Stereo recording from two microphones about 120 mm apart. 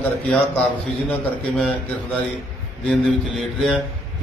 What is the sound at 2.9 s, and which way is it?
Speech, centre (ahead or behind).